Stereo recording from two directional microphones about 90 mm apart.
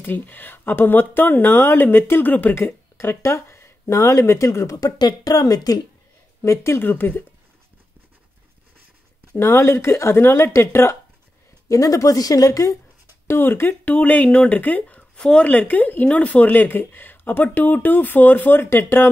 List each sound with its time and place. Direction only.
0.0 s speech: 20° left (ahead or behind); by 5.8 s 45° left (ahead or behind)
6.4 s speech: 30° left (ahead or behind)
9.4 s speech: 30° left (ahead or behind)
13.3 s speech: 25° left (ahead or behind)